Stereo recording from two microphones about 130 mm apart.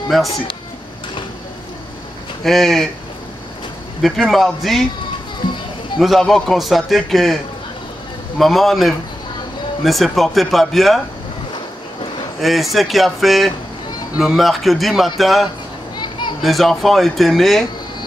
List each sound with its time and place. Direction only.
0.1 s a man's voice: centre (ahead or behind)
2.4 s a man's voice: centre (ahead or behind)
4.0 s a man's voice: centre (ahead or behind)
5.9 s a man's voice: centre (ahead or behind)
8.4 s a man's voice: centre (ahead or behind)
12.4 s a man's voice: centre (ahead or behind)
16.0 s children playing: 35° left (ahead or behind)
16.4 s a man's voice: centre (ahead or behind)